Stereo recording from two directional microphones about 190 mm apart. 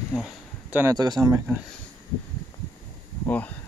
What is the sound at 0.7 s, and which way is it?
Speech, 20° right (ahead or behind).